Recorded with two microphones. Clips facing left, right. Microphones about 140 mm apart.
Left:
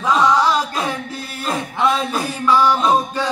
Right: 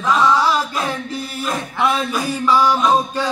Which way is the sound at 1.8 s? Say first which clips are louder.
Left 1 dB; 10° right (ahead or behind).